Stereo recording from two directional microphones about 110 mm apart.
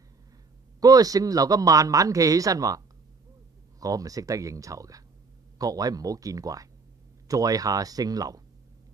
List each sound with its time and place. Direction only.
0.7 s speech: 35° right (ahead or behind)
3.8 s speech: 35° right (ahead or behind)